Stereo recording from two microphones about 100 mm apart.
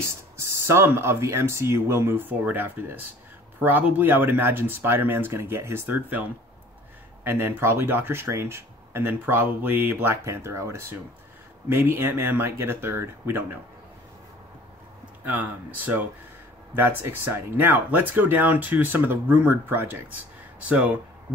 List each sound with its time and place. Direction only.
0.0 s speech: 25° right (ahead or behind)
7.2 s speech: 20° right (ahead or behind)
15.2 s speech: 20° right (ahead or behind)